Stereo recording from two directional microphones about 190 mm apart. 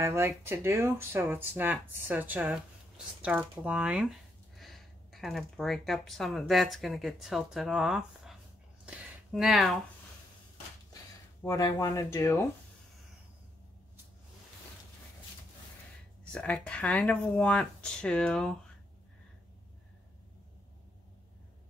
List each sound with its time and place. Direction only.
0.0 s speech: 15° right (ahead or behind)
8.8 s a sound: 5° right (ahead or behind)
11.4 s speech: 20° left (ahead or behind)
16.3 s speech: 5° left (ahead or behind)